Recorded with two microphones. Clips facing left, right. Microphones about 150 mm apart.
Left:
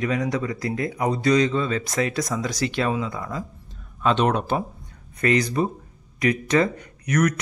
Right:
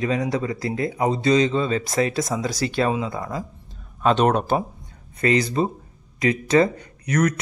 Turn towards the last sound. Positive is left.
turn(degrees=-30)  # may be behind; listen again after turning